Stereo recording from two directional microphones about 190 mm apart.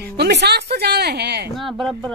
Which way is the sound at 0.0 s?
60° right (ahead or behind).